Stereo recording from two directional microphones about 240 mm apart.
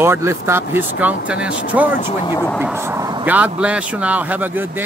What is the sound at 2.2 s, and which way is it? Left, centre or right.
Speech, centre.